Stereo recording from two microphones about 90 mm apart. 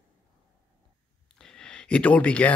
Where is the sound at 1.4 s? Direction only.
10° left (ahead or behind).